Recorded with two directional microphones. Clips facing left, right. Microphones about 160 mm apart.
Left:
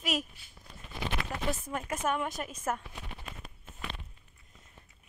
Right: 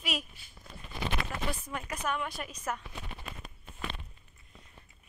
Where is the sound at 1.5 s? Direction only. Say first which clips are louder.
Left 3 dB; 45° left (ahead or behind).